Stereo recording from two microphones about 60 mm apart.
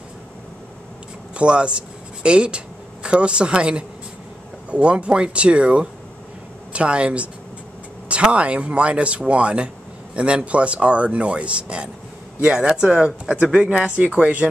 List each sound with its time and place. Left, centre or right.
1.3 s speech: centre